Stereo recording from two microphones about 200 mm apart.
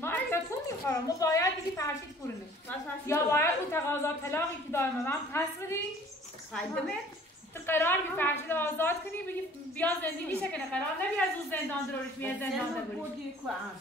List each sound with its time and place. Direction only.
0.0 s a sound: 10° left (ahead or behind)
0.8 s a woman's voice: 15° left (ahead or behind)
3.1 s a woman's voice: 10° left (ahead or behind)